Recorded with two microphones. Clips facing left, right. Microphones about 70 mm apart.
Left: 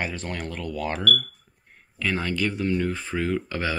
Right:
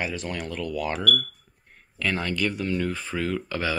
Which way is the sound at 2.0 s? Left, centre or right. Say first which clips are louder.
Even; left.